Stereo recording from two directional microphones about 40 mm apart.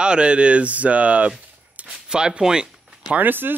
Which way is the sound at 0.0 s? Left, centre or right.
Right.